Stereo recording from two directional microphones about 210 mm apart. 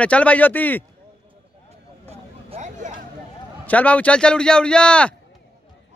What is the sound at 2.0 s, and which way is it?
Vehicle, 30° right (ahead or behind).